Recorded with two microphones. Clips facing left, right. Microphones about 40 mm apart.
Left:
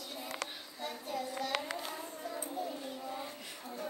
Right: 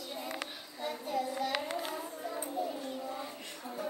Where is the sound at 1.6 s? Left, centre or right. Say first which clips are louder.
Right 3 dB; centre.